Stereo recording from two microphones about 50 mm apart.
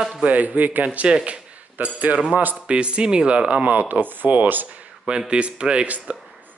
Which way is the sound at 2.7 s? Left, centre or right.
Right.